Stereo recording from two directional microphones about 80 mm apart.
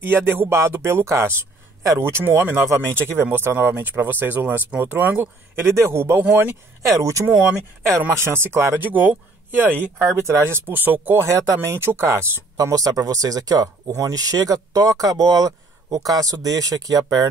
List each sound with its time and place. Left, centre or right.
0.0 s speech: right
5.8 s speech: right
6.9 s speech: right
11.2 s speech: right
12.5 s speech: right